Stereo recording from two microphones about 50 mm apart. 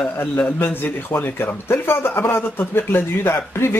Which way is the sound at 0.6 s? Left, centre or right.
Left.